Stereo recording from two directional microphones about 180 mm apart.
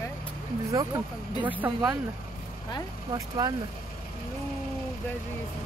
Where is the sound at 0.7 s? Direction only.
20° right (ahead or behind).